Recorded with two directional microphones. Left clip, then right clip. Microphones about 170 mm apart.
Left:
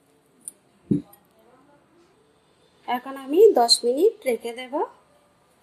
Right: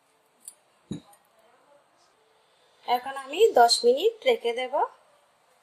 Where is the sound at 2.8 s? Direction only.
20° left (ahead or behind); by 4.8 s 5° left (ahead or behind).